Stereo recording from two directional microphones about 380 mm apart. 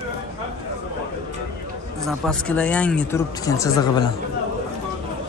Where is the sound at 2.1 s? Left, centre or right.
Centre.